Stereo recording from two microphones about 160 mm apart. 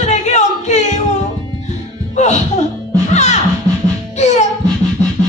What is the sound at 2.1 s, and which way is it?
Music, 45° left (ahead or behind).